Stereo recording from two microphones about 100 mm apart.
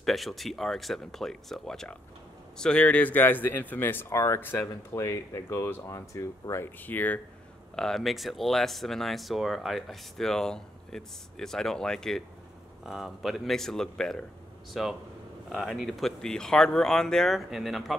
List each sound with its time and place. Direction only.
0.0 s speech: centre (ahead or behind); by 7.2 s 20° left (ahead or behind)
7.7 s speech: 5° left (ahead or behind)